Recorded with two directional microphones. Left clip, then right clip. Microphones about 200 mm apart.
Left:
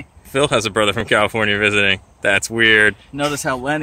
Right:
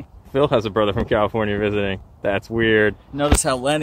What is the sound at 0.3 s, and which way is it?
Speech, 5° left (ahead or behind).